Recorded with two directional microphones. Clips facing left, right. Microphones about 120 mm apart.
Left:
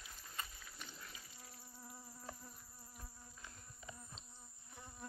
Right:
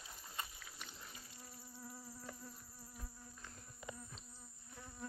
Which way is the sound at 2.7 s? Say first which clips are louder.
Right 3 dB; 5° left (ahead or behind).